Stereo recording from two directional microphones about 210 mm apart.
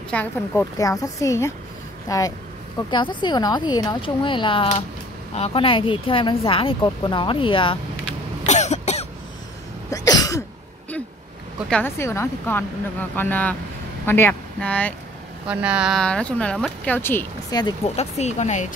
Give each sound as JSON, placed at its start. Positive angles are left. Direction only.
{"t": 0.1, "sound": "a woman's voice", "side_deg": 10}
{"t": 8.5, "sound": "cough", "side_deg": 35}
{"t": 9.8, "sound": "cough", "side_deg": 15}
{"t": 11.7, "sound": "a woman's voice", "side_deg": 10}
{"t": 15.4, "sound": "speech", "side_deg": -5}
{"t": 17.9, "sound": "speech", "side_deg": 30}